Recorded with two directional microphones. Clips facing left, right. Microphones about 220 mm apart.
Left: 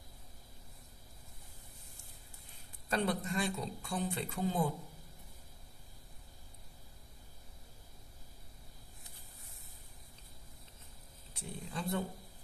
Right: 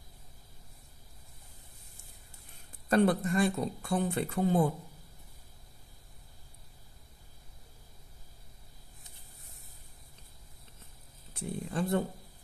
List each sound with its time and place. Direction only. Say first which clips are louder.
2.9 s speech: right 8 dB; 50° right (ahead or behind)
11.3 s speech: right 8 dB; 55° right (ahead or behind)